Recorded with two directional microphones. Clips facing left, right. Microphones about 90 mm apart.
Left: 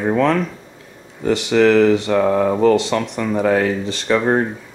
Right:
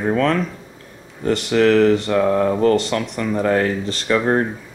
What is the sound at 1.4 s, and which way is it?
Speech, centre (ahead or behind).